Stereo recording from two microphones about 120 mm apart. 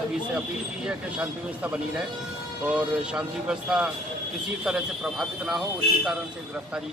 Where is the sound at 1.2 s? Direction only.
10° right (ahead or behind).